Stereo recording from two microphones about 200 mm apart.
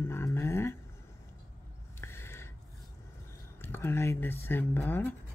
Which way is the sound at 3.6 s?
10° left (ahead or behind).